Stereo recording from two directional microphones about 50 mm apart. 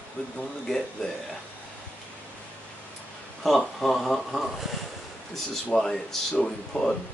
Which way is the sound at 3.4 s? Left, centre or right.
Centre.